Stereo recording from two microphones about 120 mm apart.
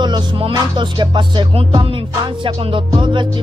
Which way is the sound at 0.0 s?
40° right (ahead or behind).